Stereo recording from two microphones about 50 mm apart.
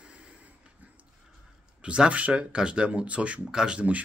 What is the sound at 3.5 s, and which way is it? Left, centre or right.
Speech, centre.